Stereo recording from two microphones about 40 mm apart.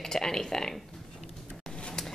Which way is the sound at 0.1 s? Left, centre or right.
Centre.